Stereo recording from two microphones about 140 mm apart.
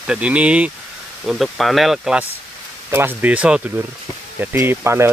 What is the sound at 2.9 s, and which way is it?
Speech, 15° right (ahead or behind).